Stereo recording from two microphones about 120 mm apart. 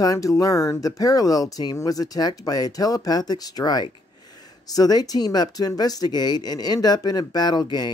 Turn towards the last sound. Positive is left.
turn(degrees=35)  # may be behind; listen again after turning